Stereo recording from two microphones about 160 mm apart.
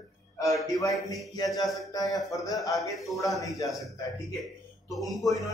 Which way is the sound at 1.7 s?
20° left (ahead or behind).